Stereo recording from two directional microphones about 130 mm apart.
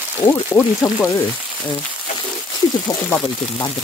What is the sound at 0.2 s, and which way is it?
Speech, 20° left (ahead or behind).